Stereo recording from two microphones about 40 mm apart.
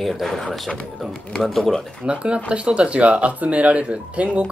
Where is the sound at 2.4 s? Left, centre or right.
Right.